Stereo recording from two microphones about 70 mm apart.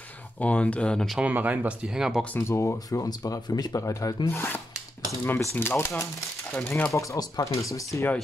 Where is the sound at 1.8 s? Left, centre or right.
Centre.